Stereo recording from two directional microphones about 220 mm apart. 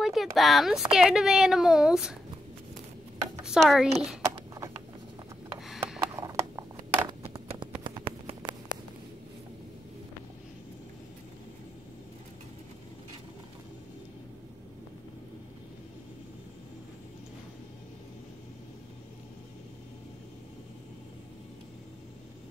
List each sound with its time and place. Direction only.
0.0 s speech: centre (ahead or behind)
3.4 s speech: centre (ahead or behind)
5.6 s snort: centre (ahead or behind)
6.1 s a sound: 15° right (ahead or behind)